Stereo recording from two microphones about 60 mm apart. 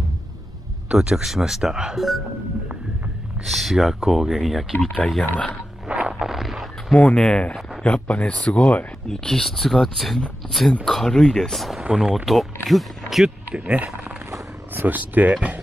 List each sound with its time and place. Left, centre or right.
0.8 s speech: centre
2.0 s speech: centre
3.4 s speech: centre
4.8 s speech: centre
5.9 s a sound: right
6.2 s a sound: centre
7.0 s speech: centre
9.0 s speech: centre
11.8 s speech: centre
12.3 s speech: centre
13.6 s speech: right